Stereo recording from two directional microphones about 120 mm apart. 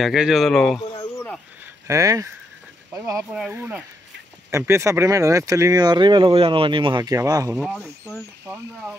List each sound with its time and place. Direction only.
0.0 s speech: 5° right (ahead or behind)
1.9 s speech: 25° right (ahead or behind)
3.3 s speech: 10° right (ahead or behind)
4.5 s speech: 25° right (ahead or behind)
7.5 s speech: centre (ahead or behind)